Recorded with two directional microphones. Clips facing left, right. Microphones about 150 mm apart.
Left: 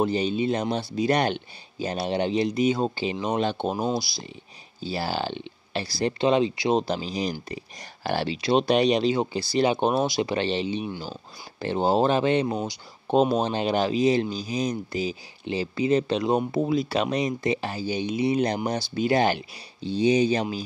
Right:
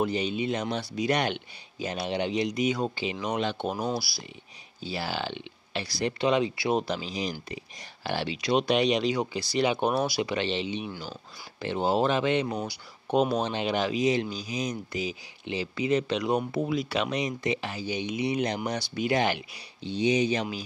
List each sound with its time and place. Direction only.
0.0 s speech: 35° left (ahead or behind)
4.7 s speech: 35° left (ahead or behind)
8.4 s speech: 30° left (ahead or behind)
10.3 s speech: 40° left (ahead or behind)